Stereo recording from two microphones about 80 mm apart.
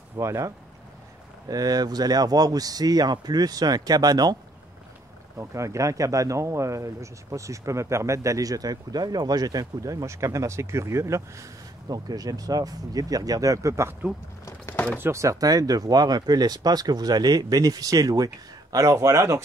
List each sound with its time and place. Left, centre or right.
0.2 s speech: right
1.5 s speech: right
5.4 s speech: right
11.9 s speech: right
15.0 s speech: right
15.4 s speech: right